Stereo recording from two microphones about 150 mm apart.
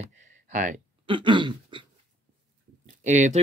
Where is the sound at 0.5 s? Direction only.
60° right (ahead or behind).